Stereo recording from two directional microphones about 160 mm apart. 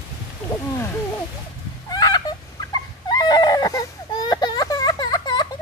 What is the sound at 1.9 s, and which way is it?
Fowl, 25° left (ahead or behind).